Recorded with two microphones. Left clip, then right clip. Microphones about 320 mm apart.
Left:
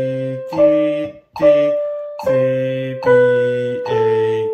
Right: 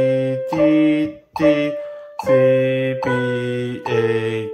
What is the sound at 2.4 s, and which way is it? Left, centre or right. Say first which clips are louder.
Music: right 2 dB; centre.